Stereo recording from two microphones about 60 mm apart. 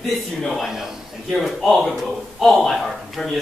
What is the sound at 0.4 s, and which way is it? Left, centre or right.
A man's voice, centre.